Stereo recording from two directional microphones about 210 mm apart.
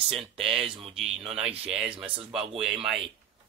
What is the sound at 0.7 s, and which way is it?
Speech, 25° right (ahead or behind).